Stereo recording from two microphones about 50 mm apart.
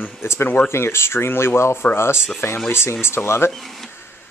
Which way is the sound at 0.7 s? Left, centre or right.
Left.